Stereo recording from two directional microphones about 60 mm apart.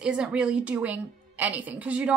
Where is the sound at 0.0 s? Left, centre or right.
Centre.